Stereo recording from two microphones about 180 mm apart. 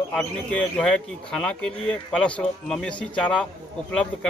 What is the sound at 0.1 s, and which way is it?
Speech, 5° left (ahead or behind).